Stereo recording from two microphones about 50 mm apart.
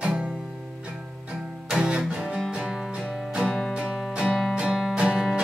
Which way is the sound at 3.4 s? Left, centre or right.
Centre.